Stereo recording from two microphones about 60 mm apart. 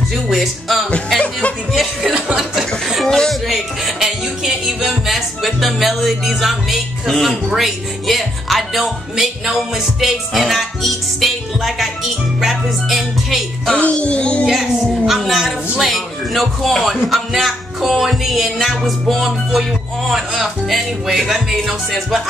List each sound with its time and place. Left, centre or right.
0.3 s speech: centre
2.9 s a sound: centre
3.3 s speech: centre
12.4 s music: centre
13.7 s speech: left
14.4 s a sound: centre
15.8 s speech: centre